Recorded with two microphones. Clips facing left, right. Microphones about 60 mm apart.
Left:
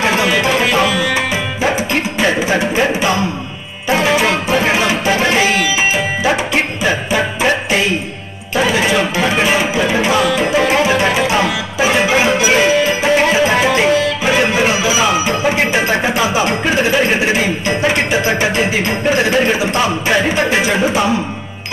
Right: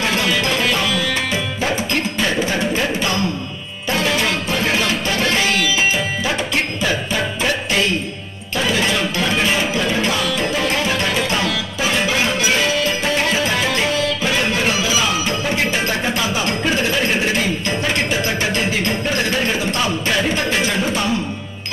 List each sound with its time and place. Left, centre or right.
0.0 s tabla: centre
2.9 s music: centre
18.3 s a sound: left